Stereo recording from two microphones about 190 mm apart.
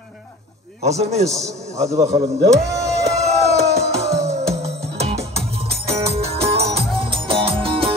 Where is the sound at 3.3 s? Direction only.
35° right (ahead or behind).